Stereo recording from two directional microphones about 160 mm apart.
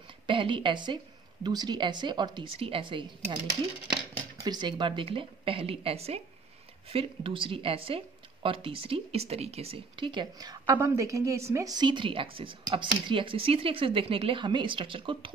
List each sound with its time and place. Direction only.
0.3 s a woman's voice: 30° right (ahead or behind)
4.4 s a woman's voice: 25° right (ahead or behind)